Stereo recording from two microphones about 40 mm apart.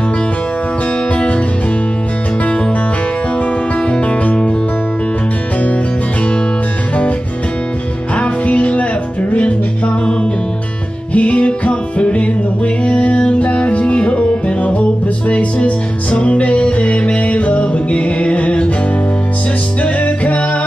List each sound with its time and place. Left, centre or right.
3.9 s music: left
8.2 s music: left
11.1 s music: left
19.8 s music: left